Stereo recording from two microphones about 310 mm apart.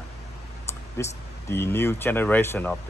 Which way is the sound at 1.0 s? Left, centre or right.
Centre.